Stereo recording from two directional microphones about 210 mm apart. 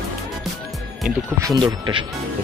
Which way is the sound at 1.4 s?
15° right (ahead or behind).